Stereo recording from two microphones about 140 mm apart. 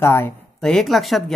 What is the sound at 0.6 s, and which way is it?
Speech, 5° left (ahead or behind).